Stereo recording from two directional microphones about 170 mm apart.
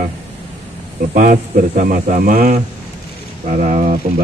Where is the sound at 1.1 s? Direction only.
55° right (ahead or behind).